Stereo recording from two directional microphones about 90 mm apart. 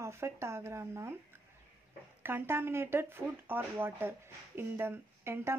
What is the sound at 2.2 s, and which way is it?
Speech, 25° right (ahead or behind).